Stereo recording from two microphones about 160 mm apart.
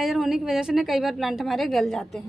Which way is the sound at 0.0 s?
Centre (ahead or behind).